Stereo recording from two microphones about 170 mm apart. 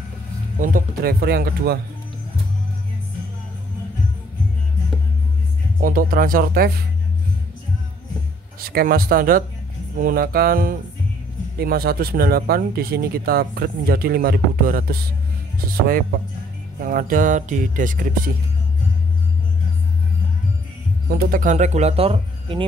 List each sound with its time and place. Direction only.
0.6 s speech: 55° right (ahead or behind)
5.8 s speech: 55° right (ahead or behind)
8.5 s speech: 60° right (ahead or behind)
16.8 s speech: 55° right (ahead or behind)
21.1 s speech: 55° right (ahead or behind); by 22.7 s 30° right (ahead or behind)